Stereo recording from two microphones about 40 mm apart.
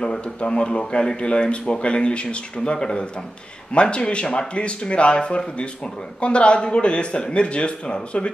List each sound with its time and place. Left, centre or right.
0.0 s speech: left